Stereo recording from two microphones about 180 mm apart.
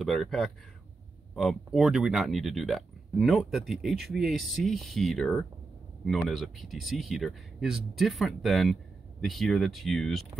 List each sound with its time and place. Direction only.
0.0 s speech: centre (ahead or behind)